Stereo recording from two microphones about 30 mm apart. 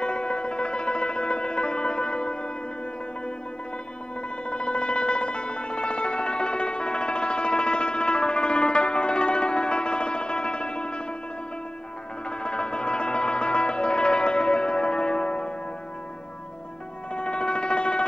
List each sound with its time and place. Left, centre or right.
0.0 s music: left
4.5 s music: left
12.3 s music: left
17.1 s a sound: left